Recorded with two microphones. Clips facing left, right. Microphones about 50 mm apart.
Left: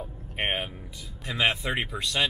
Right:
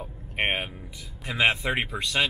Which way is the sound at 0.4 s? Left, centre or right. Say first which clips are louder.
Right 2 dB; centre.